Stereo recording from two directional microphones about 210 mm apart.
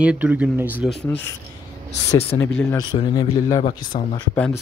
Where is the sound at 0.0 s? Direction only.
5° right (ahead or behind).